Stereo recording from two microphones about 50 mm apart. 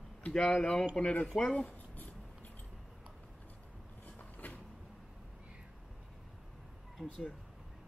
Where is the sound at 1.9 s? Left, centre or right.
Left.